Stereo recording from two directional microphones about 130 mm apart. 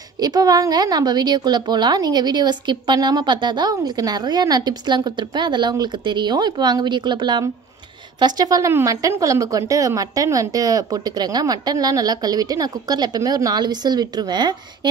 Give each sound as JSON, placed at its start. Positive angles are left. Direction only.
{"t": 0.2, "sound": "a woman's voice", "side_deg": -30}